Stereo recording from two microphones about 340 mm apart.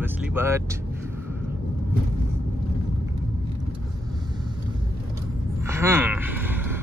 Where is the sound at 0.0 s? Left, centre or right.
Centre.